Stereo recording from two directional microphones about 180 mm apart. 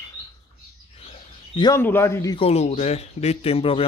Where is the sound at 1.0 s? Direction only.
30° left (ahead or behind).